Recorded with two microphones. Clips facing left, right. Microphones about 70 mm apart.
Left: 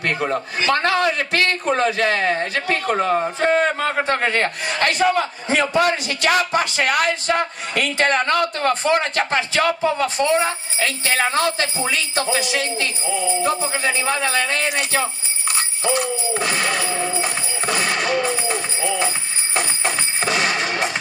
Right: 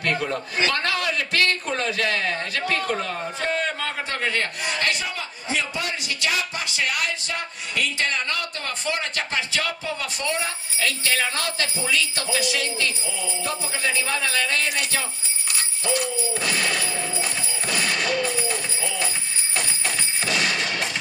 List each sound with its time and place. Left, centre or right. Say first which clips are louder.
0.0 s a man's voice: left 3 dB; left
5.0 s a man's voice: left 13 dB; left
15.5 s jingle bell: left 5 dB; left
19.5 s music: left 5 dB; left